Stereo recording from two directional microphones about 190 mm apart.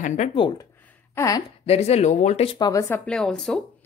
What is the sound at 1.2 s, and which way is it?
Speech, 15° left (ahead or behind).